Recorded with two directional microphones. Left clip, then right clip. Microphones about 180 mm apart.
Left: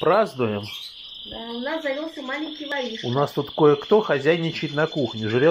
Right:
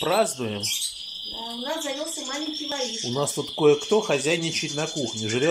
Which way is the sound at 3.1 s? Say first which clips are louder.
Left 3 dB; centre (ahead or behind).